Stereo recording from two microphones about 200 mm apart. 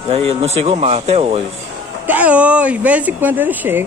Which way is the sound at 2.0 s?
10° right (ahead or behind).